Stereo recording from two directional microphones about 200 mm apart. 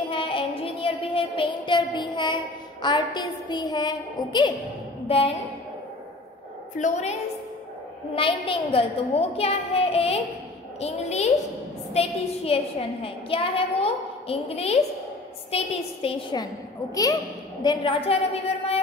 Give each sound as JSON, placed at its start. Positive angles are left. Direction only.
{"t": 0.1, "sound": "child singing", "side_deg": 25}
{"t": 5.0, "sound": "a woman's voice", "side_deg": 30}
{"t": 6.8, "sound": "a woman's voice", "side_deg": 35}